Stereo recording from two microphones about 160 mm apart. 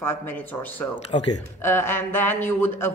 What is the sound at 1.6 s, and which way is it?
A woman's voice, 15° left (ahead or behind).